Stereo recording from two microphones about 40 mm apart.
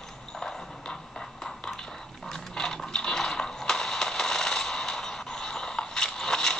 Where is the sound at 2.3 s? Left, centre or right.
Centre.